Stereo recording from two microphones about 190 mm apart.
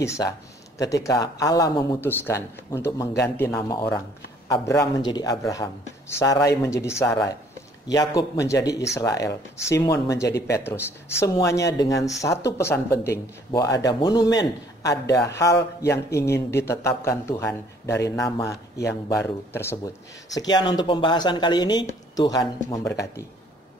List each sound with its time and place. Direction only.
0.0 s a man's voice: 15° left (ahead or behind)